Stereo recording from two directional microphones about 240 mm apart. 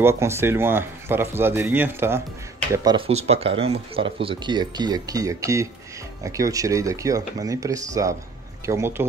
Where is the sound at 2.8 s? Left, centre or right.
Right.